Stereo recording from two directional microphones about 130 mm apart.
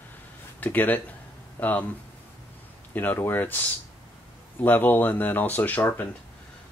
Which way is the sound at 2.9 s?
15° left (ahead or behind).